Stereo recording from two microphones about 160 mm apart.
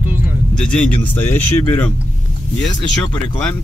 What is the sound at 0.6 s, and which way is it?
Speech, 10° left (ahead or behind).